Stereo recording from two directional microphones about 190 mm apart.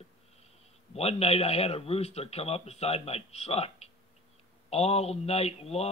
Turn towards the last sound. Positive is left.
turn(degrees=30)  # may be behind; listen again after turning